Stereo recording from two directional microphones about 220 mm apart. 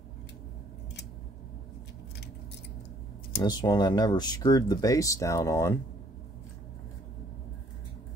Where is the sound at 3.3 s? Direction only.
20° left (ahead or behind).